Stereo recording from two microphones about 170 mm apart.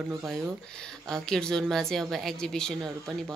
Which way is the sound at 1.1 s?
5° left (ahead or behind).